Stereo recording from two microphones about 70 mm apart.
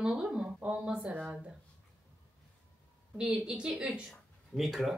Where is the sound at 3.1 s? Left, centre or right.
Centre.